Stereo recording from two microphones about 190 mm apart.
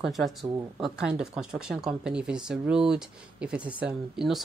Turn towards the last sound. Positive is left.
turn(degrees=0)  # may be behind; listen again after turning